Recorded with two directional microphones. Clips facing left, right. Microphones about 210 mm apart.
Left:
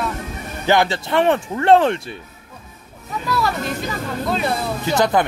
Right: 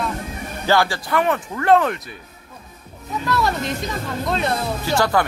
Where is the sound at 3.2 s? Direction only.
Centre (ahead or behind).